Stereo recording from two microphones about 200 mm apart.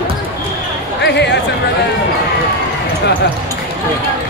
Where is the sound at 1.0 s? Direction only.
60° left (ahead or behind).